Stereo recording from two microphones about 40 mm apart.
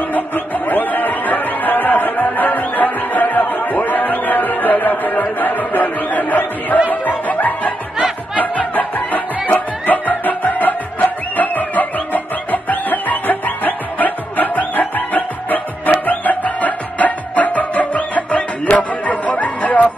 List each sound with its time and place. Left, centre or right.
0.7 s chatter: left
6.9 s music: left